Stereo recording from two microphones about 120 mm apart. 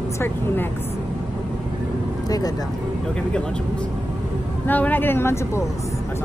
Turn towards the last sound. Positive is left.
turn(degrees=20)  # may be behind; listen again after turning